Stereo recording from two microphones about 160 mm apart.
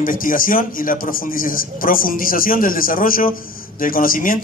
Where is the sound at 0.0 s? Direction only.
60° left (ahead or behind).